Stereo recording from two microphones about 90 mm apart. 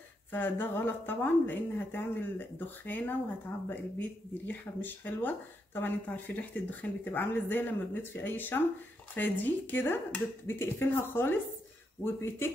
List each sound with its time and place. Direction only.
0.3 s speech: 20° left (ahead or behind)